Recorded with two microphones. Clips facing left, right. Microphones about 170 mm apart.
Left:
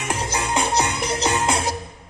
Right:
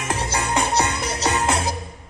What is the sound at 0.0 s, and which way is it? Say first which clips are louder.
Music: even; 20° left (ahead or behind).